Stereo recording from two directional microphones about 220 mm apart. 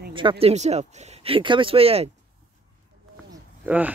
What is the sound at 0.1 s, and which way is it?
Speech, 20° right (ahead or behind).